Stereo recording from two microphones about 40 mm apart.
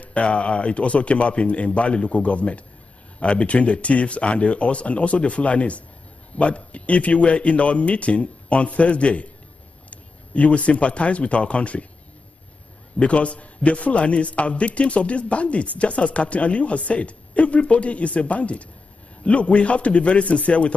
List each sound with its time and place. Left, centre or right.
0.0 s a man's voice: left
13.0 s a man's voice: left